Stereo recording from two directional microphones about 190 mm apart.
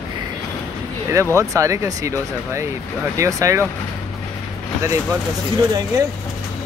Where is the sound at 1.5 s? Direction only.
15° right (ahead or behind).